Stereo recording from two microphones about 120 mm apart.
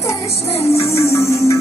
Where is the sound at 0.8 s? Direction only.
25° left (ahead or behind).